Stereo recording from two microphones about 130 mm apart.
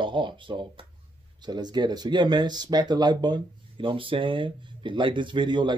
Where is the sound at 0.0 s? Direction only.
35° right (ahead or behind).